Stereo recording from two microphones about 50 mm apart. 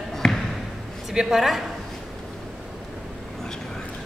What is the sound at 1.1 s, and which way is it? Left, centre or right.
Speech, centre.